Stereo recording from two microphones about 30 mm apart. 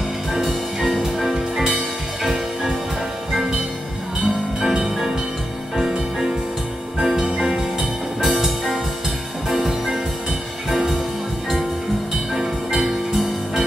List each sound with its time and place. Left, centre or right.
0.3 s music: centre
4.6 s music: centre
7.3 s music: centre
13.1 s music: centre